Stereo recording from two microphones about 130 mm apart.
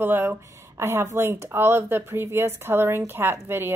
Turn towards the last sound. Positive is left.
turn(degrees=-15)  # may be behind; listen again after turning